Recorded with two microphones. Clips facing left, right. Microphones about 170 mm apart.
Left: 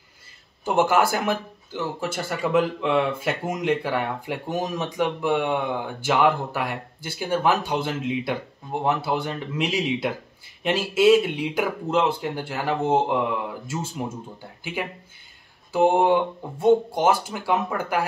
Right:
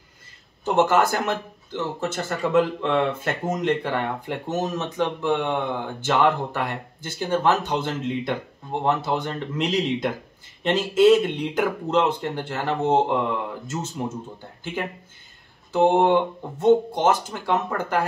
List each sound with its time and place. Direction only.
0.7 s speech: 10° left (ahead or behind)